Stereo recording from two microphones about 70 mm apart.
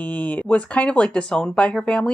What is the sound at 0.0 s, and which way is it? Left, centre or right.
Speech, centre.